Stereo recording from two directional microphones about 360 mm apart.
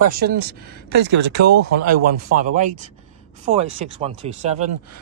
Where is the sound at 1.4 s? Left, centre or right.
Right.